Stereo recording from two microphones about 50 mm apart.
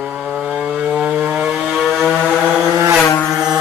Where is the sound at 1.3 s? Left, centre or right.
Right.